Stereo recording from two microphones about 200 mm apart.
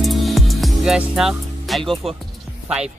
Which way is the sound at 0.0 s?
Centre (ahead or behind).